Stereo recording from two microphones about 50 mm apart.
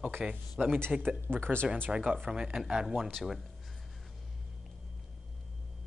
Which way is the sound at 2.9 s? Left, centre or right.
Centre.